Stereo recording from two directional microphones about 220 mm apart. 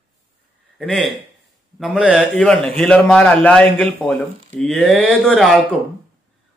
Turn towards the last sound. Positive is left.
turn(degrees=0)  # may be behind; listen again after turning